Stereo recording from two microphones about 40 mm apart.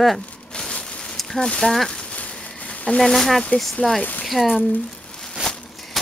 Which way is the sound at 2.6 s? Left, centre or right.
Left.